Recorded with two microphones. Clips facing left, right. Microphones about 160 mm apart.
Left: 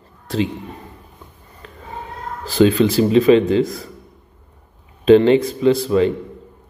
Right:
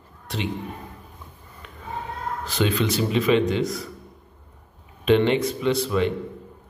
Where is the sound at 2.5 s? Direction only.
35° left (ahead or behind).